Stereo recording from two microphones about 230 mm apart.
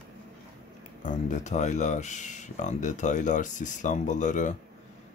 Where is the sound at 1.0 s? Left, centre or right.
Left.